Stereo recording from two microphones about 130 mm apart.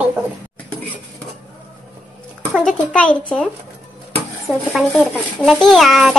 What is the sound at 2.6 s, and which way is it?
Speech, 10° left (ahead or behind).